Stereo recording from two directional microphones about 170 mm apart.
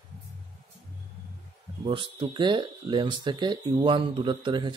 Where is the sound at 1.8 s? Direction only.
30° right (ahead or behind).